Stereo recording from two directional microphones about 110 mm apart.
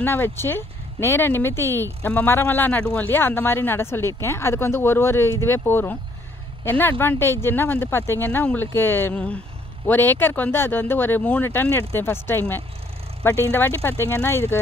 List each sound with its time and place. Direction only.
0.0 s speech: 20° left (ahead or behind)